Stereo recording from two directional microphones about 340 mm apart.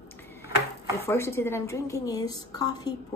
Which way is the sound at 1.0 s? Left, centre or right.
Centre.